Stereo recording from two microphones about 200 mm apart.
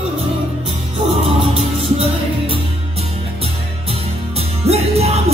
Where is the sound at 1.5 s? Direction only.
30° right (ahead or behind).